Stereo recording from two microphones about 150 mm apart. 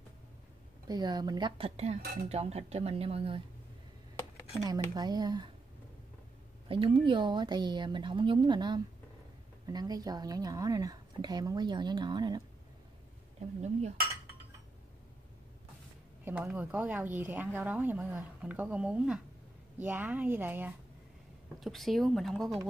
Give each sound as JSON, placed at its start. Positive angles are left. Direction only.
{"t": 0.8, "sound": "a woman's voice", "side_deg": -30}
{"t": 2.2, "sound": "speech", "side_deg": -45}
{"t": 4.6, "sound": "a woman's voice", "side_deg": -25}
{"t": 6.7, "sound": "a woman's voice", "side_deg": -35}
{"t": 13.6, "sound": "cutlery", "side_deg": -50}
{"t": 16.3, "sound": "speech", "side_deg": -15}
{"t": 21.5, "sound": "speech", "side_deg": 0}